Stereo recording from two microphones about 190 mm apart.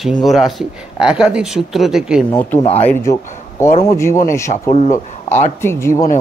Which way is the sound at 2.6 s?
35° left (ahead or behind).